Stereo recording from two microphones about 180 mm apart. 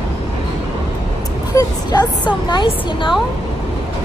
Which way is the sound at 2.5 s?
25° left (ahead or behind).